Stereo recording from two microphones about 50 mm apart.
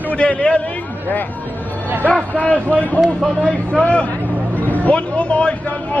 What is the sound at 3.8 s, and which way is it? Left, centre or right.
A man's voice, left.